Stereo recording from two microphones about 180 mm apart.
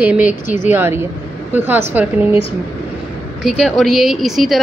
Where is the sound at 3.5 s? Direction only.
Centre (ahead or behind).